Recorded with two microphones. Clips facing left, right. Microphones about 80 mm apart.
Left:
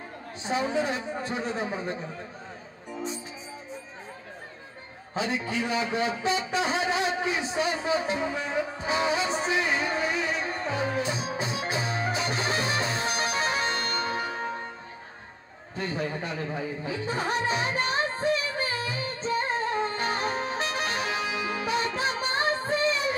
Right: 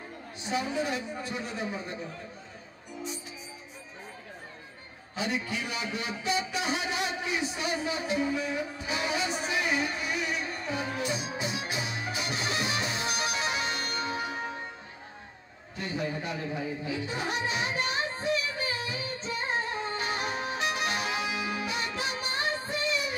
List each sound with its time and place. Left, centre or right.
0.4 s a man's voice: left
5.1 s music: left
15.7 s a man's voice: left
16.8 s music: left